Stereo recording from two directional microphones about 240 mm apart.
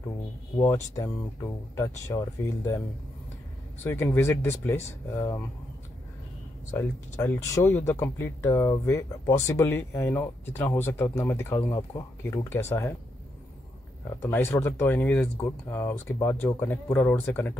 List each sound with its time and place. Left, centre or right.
0.9 s speech: centre
3.8 s speech: centre
6.7 s speech: centre
14.2 s speech: centre